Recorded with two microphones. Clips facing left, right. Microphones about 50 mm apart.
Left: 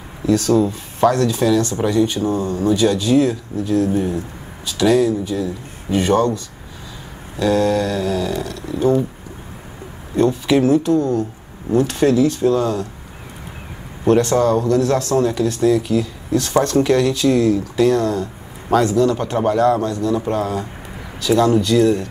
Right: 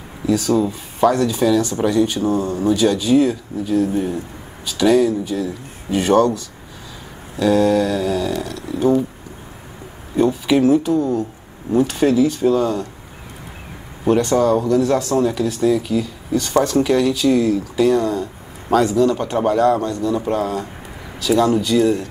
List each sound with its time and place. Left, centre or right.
0.3 s speech: centre
2.2 s speech: right
2.7 s speech: centre
5.9 s speech: right
7.3 s speech: centre
10.1 s speech: centre
14.1 s speech: centre
21.5 s speech: centre